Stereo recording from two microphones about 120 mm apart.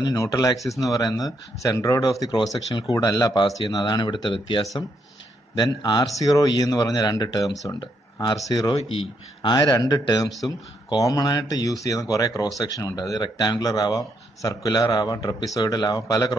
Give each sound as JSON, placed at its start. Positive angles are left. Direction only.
{"t": 0.0, "sound": "speech", "side_deg": 30}
{"t": 7.4, "sound": "speech", "side_deg": 0}
{"t": 8.5, "sound": "speech", "side_deg": 35}